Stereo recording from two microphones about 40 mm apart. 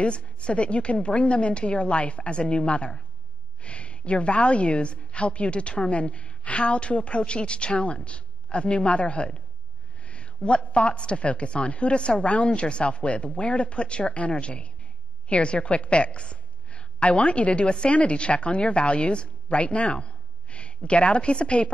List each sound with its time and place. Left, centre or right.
0.0 s a woman's voice: left